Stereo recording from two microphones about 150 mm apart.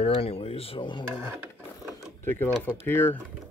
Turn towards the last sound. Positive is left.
turn(degrees=15)  # may be behind; listen again after turning